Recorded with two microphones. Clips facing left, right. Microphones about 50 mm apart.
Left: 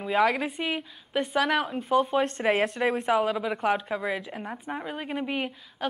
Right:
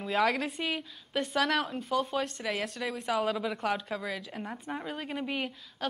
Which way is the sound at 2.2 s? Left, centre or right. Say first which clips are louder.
Left 9 dB; left.